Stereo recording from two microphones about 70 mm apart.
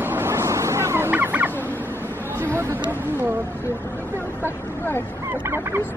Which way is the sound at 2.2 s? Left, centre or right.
Right.